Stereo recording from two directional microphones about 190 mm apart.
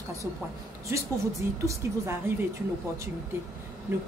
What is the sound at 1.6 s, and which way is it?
Speech, 15° right (ahead or behind).